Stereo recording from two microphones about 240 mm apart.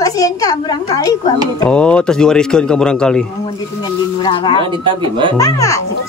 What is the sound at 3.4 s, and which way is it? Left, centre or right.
Speech, centre.